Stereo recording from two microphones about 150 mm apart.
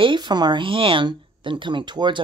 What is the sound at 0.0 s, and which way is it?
Speech, 30° right (ahead or behind).